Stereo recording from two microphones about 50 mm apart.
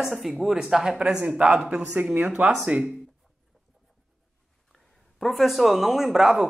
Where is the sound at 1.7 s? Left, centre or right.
Right.